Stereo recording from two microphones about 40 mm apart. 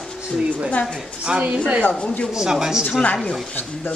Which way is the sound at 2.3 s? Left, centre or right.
Centre.